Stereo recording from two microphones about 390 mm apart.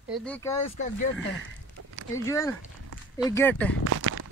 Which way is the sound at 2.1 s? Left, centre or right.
Centre.